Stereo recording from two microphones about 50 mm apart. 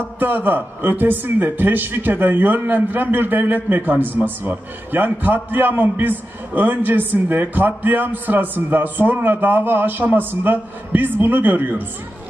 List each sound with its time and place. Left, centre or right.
0.2 s speech: right